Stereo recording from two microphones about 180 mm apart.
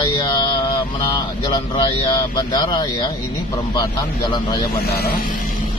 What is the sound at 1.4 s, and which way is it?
Speech, 30° left (ahead or behind).